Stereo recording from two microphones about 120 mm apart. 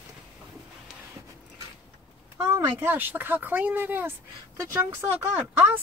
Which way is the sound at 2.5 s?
20° right (ahead or behind).